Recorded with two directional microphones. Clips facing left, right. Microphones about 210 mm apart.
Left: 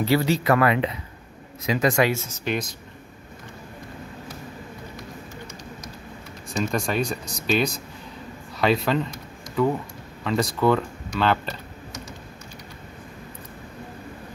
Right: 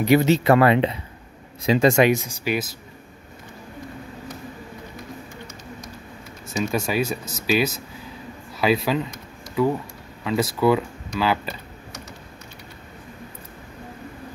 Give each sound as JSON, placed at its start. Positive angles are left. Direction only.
{"t": 0.0, "sound": "speech", "side_deg": -20}
{"t": 6.6, "sound": "speech", "side_deg": -5}